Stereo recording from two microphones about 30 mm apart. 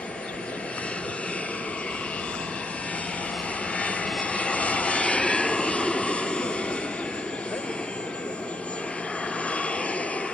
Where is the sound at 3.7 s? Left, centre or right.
Left.